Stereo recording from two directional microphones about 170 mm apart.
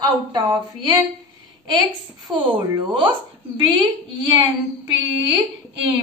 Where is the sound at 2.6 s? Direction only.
30° right (ahead or behind).